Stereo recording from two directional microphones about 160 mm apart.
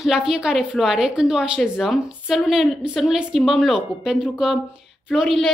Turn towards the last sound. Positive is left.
turn(degrees=0)  # may be behind; listen again after turning